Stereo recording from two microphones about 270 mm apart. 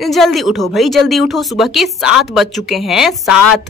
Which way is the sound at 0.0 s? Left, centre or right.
Centre.